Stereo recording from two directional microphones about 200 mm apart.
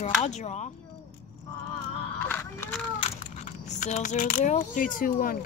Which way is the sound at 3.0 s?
35° left (ahead or behind).